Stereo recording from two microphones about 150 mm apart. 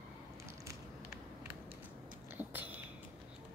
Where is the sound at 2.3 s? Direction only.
10° right (ahead or behind).